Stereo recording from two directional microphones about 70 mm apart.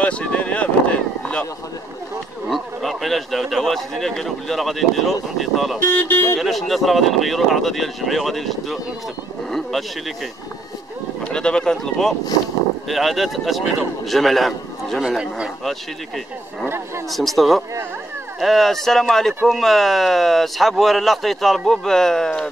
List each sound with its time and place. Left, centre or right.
0.0 s a sound: centre
2.5 s speech: centre
5.9 s speech: left
6.3 s speech: centre
11.3 s speech: centre
15.0 s a man's voice: centre
16.6 s speech: right
17.1 s speech: centre